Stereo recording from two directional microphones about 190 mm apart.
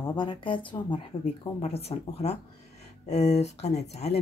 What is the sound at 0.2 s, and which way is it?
Speech, 25° left (ahead or behind).